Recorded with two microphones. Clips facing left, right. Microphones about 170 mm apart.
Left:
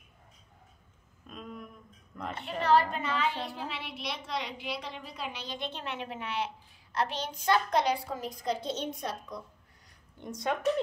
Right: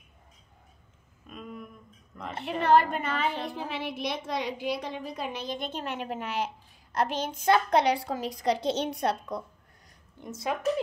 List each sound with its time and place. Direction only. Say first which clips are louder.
1.3 s a sound: right 2 dB; centre (ahead or behind)
2.3 s a woman's voice: right 3 dB; 55° right (ahead or behind)
10.2 s a woman's voice: even; 5° right (ahead or behind)